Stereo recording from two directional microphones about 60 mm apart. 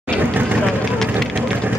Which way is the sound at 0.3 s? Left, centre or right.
Right.